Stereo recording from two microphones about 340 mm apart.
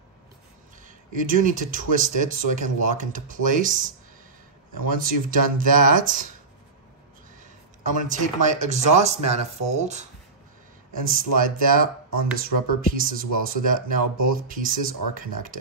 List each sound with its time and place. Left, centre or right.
0.8 s speech: right
7.8 s speech: right
11.1 s speech: right
12.9 s speech: right